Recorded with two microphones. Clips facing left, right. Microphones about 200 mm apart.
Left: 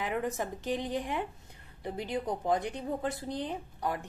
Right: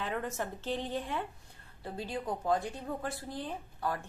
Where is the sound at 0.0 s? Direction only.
15° left (ahead or behind).